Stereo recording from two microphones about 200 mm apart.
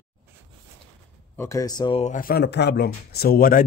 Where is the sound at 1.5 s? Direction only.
20° left (ahead or behind).